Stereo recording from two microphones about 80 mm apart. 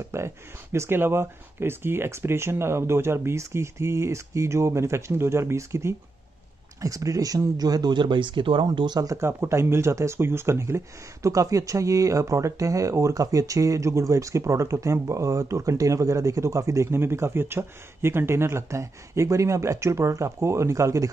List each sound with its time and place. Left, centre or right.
0.1 s speech: right
8.7 s speech: right
9.0 s speech: right